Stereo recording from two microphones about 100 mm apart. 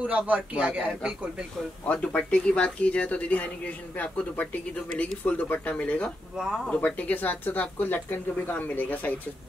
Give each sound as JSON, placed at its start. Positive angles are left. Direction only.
{"t": 0.0, "sound": "a man's voice", "side_deg": -15}
{"t": 1.9, "sound": "speech", "side_deg": 10}
{"t": 6.3, "sound": "speech", "side_deg": -5}
{"t": 6.6, "sound": "speech", "side_deg": 15}